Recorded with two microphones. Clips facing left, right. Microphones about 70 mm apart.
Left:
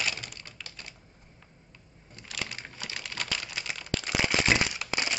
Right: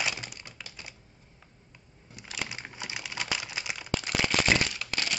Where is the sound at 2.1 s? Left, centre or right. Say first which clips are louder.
Right 1 dB; centre.